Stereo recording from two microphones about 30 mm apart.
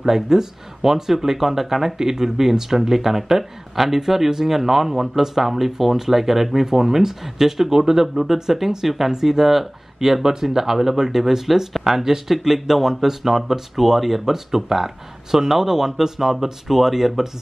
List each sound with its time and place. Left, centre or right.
0.0 s speech: centre